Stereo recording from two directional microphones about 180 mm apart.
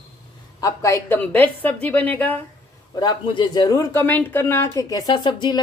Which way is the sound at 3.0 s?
25° left (ahead or behind).